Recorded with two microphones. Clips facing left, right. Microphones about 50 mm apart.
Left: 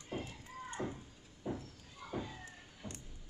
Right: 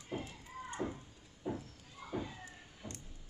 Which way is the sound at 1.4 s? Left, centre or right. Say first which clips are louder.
Right 1 dB; centre.